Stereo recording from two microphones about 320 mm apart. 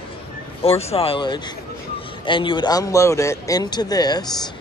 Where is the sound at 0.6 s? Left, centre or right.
Centre.